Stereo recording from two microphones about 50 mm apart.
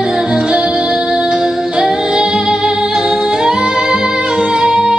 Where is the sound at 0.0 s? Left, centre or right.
Centre.